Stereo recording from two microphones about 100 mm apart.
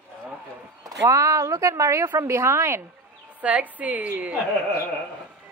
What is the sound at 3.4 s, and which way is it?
Speech, 15° right (ahead or behind).